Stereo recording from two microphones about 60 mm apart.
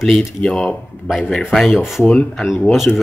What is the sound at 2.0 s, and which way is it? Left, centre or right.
Speech, left.